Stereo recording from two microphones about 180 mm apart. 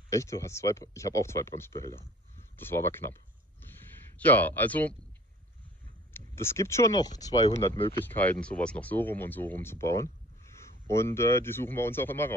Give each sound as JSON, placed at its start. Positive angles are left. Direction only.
{"t": 0.1, "sound": "speech", "side_deg": 15}
{"t": 3.6, "sound": "a sound", "side_deg": 10}
{"t": 6.1, "sound": "speech", "side_deg": 15}
{"t": 7.9, "sound": "speech", "side_deg": 10}